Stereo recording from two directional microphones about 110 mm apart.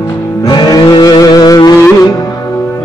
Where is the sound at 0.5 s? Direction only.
40° left (ahead or behind).